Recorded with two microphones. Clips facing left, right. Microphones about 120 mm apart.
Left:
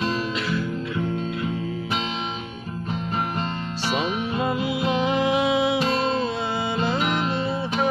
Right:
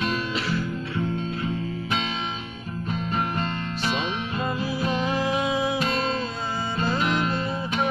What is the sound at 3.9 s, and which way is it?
Music, 20° left (ahead or behind).